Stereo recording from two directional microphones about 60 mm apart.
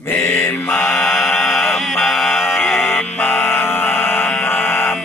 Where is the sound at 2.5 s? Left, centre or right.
Left.